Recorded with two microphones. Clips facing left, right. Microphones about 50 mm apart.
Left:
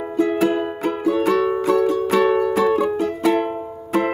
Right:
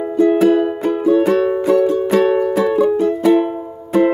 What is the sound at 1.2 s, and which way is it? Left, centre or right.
Music, centre.